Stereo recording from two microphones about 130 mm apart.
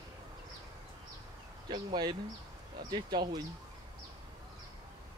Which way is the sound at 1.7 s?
35° right (ahead or behind).